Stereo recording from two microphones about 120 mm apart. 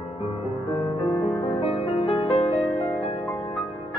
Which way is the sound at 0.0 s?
65° left (ahead or behind).